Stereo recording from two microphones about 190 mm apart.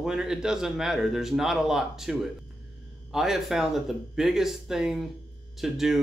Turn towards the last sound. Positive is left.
turn(degrees=0)  # may be behind; listen again after turning